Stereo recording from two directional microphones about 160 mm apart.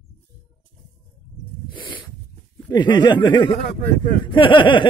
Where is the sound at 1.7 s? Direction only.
30° left (ahead or behind).